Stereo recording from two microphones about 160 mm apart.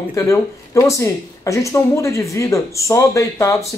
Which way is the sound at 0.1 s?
20° left (ahead or behind).